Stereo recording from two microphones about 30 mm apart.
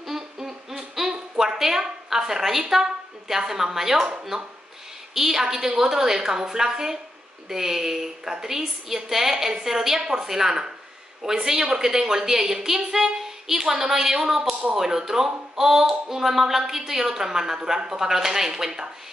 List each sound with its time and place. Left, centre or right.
0.5 s a sound: centre
1.4 s a woman's voice: centre
5.1 s a woman's voice: centre